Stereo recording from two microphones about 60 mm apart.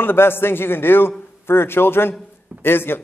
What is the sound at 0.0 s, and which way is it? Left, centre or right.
A woman's voice, left.